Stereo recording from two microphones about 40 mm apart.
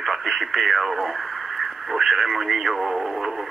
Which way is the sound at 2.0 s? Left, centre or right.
Centre.